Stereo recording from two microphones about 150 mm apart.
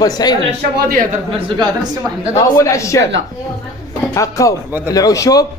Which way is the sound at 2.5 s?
20° left (ahead or behind).